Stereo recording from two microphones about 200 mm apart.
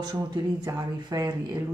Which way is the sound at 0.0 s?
20° right (ahead or behind).